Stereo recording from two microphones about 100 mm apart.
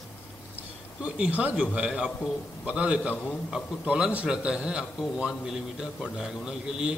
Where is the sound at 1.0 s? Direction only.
10° right (ahead or behind).